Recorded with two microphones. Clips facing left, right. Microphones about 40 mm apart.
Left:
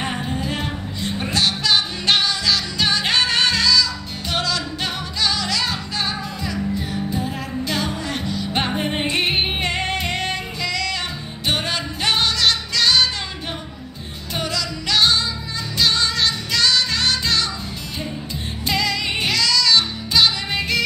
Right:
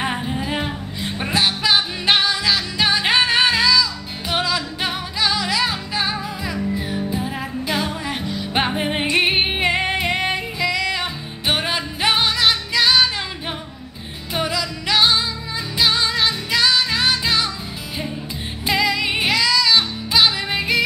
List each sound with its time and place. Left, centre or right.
0.0 s music: centre
14.3 s music: centre
18.7 s music: centre